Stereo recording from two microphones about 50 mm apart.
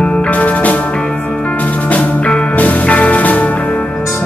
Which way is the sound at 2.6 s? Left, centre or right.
Left.